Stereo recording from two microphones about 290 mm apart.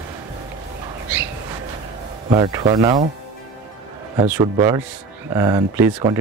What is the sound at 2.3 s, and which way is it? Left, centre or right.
Speech, centre.